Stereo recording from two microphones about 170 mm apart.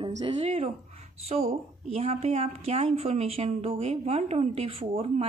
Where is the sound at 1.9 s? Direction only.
40° right (ahead or behind).